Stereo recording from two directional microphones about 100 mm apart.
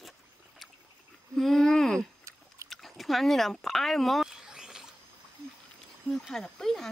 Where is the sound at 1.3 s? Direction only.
5° left (ahead or behind).